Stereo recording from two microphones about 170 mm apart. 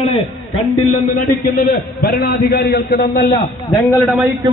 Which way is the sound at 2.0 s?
70° left (ahead or behind).